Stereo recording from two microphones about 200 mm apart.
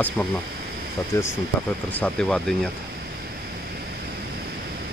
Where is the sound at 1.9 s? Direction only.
5° left (ahead or behind).